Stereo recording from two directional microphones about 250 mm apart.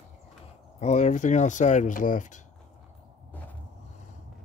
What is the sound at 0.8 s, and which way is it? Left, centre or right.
Speech, left.